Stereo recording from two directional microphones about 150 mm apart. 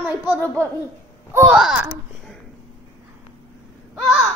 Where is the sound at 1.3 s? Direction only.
15° right (ahead or behind).